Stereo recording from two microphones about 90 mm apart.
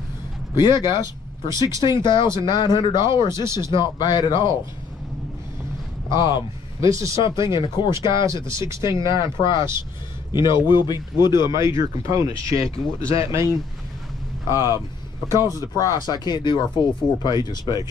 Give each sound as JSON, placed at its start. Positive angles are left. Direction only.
{"t": 0.6, "sound": "speech", "side_deg": 55}
{"t": 1.5, "sound": "speech", "side_deg": -35}
{"t": 2.0, "sound": "speech", "side_deg": 60}
{"t": 3.4, "sound": "speech", "side_deg": -30}
{"t": 3.7, "sound": "speech", "side_deg": 55}
{"t": 6.0, "sound": "speech", "side_deg": 55}
{"t": 8.5, "sound": "speech", "side_deg": -35}
{"t": 8.9, "sound": "speech", "side_deg": 65}
{"t": 11.5, "sound": "speech", "side_deg": -35}
{"t": 14.5, "sound": "speech", "side_deg": -35}
{"t": 15.6, "sound": "speech", "side_deg": 40}